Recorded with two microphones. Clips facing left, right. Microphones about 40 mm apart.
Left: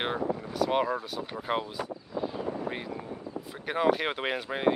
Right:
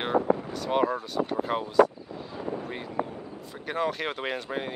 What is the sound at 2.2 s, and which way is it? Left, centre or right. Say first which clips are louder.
Vehicle: left 1 dB; centre.